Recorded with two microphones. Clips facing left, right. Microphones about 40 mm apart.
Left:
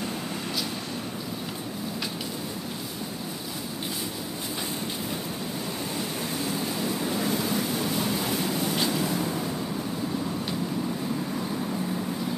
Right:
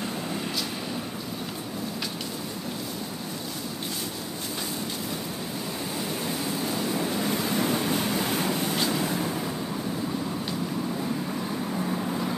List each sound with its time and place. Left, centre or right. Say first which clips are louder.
6.4 s waves: left 1 dB; centre
7.3 s vehicle: right 1 dB; right